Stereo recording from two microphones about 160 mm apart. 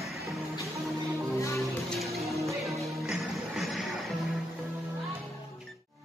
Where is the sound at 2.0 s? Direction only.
Centre (ahead or behind).